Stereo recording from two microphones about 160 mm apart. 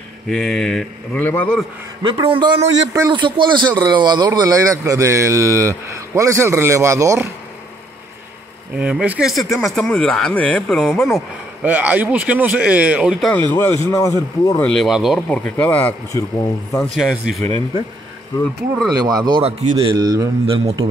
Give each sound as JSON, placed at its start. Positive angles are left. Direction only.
{"t": 0.3, "sound": "speech", "side_deg": 0}
{"t": 2.0, "sound": "a man's voice", "side_deg": -30}
{"t": 8.7, "sound": "speech", "side_deg": -5}
{"t": 11.1, "sound": "speech", "side_deg": -10}
{"t": 13.3, "sound": "speech", "side_deg": 10}
{"t": 14.6, "sound": "speech", "side_deg": 5}
{"t": 15.2, "sound": "speech", "side_deg": 10}
{"t": 17.0, "sound": "speech", "side_deg": 0}
{"t": 18.9, "sound": "a man's voice", "side_deg": -25}
{"t": 20.6, "sound": "a man's voice", "side_deg": -35}